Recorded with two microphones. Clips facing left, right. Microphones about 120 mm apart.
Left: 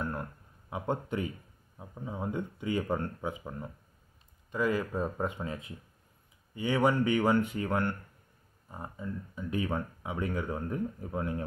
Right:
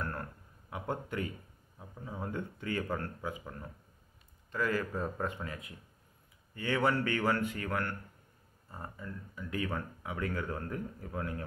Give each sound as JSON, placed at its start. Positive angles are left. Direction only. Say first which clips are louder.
{"t": 0.0, "sound": "speech", "louder": "left 3 dB", "side_deg": 15}